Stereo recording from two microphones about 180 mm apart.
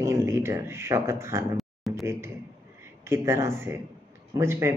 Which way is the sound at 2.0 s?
15° right (ahead or behind).